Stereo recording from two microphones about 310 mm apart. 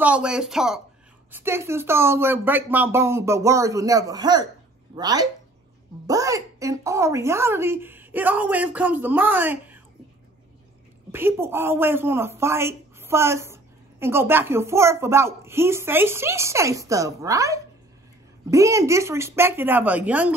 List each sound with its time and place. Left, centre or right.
0.0 s speech: centre
11.1 s speech: centre